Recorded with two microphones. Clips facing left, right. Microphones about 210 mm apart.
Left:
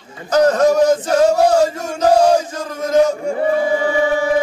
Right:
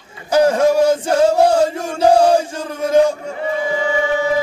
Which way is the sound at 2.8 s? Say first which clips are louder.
Right 1 dB; 10° right (ahead or behind).